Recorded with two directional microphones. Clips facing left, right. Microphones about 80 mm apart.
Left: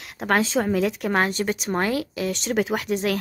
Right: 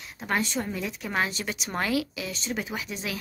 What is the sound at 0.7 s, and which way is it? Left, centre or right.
Speech, left.